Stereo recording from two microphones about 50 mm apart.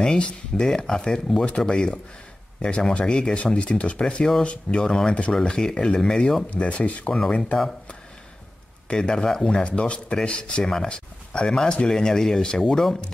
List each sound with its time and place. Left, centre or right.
0.0 s speech: centre
6.5 s speech: left
8.8 s speech: centre